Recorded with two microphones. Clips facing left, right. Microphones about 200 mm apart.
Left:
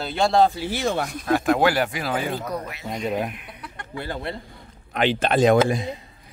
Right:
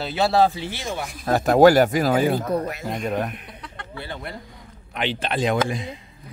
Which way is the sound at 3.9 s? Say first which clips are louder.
Left 4 dB; 45° left (ahead or behind).